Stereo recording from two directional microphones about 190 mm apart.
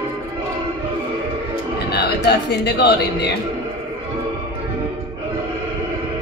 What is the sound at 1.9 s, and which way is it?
A man's voice, 60° left (ahead or behind).